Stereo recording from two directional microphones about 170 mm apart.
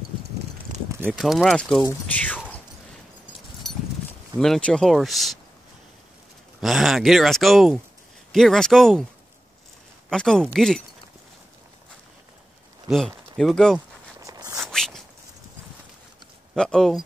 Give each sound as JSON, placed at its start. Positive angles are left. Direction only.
{"t": 1.1, "sound": "speech", "side_deg": 0}
{"t": 3.6, "sound": "clip-clop", "side_deg": 0}
{"t": 4.4, "sound": "speech", "side_deg": 5}
{"t": 6.6, "sound": "speech", "side_deg": 0}
{"t": 10.0, "sound": "speech", "side_deg": 5}
{"t": 12.8, "sound": "speech", "side_deg": 0}
{"t": 14.2, "sound": "a sound", "side_deg": -20}
{"t": 14.6, "sound": "zipper", "side_deg": 5}
{"t": 16.5, "sound": "speech", "side_deg": 5}